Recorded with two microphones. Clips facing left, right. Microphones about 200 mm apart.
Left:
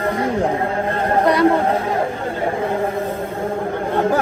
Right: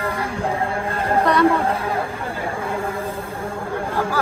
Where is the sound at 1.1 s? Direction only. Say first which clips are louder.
Left 2 dB; 30° left (ahead or behind).